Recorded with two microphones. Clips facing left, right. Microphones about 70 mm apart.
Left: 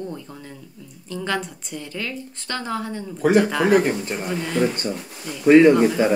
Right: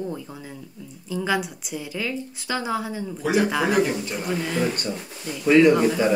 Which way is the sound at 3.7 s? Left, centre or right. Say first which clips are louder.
Left 4 dB; left.